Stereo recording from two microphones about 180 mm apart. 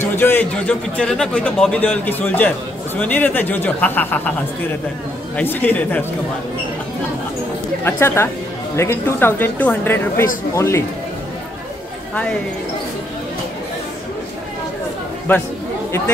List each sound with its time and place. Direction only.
0.0 s a man's voice: 10° left (ahead or behind)
5.3 s a man's voice: 10° left (ahead or behind)
7.8 s a man's voice: 15° left (ahead or behind)
15.3 s a man's voice: 10° left (ahead or behind)